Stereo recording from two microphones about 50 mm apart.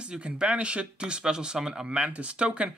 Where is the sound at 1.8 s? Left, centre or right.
Right.